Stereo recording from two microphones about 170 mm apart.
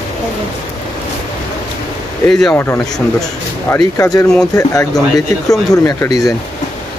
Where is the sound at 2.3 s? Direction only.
5° left (ahead or behind).